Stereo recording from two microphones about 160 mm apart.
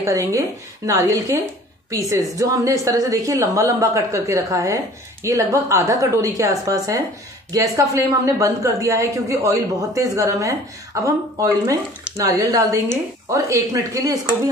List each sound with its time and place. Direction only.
0.0 s a woman's voice: 20° right (ahead or behind)